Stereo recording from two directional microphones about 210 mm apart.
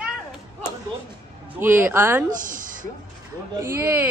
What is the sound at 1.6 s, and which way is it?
Speech, 10° right (ahead or behind).